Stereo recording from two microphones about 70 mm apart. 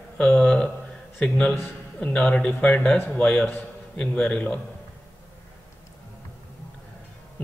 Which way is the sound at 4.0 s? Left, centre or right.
Centre.